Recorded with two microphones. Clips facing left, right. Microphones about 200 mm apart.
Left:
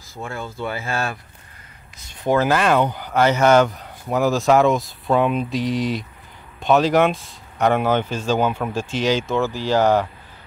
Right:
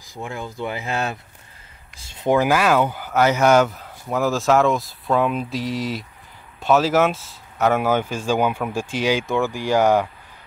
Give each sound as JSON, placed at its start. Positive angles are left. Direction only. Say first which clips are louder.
{"t": 0.1, "sound": "speech", "louder": "even", "side_deg": -15}